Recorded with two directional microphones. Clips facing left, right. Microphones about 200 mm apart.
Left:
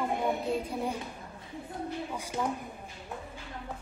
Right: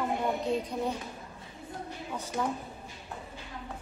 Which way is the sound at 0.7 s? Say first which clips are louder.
Right 1 dB; 10° left (ahead or behind).